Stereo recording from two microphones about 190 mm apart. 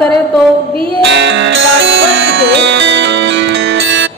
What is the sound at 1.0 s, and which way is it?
Music, 70° right (ahead or behind).